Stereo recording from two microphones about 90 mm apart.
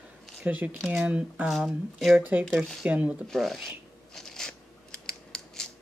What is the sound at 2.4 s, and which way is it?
Speech, centre (ahead or behind).